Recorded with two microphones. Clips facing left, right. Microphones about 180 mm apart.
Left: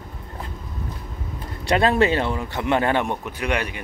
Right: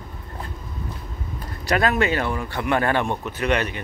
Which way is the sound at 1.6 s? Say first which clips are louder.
Left 2 dB; 30° left (ahead or behind).